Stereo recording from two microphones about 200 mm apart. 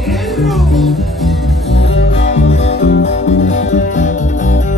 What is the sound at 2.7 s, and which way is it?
Music, 60° left (ahead or behind).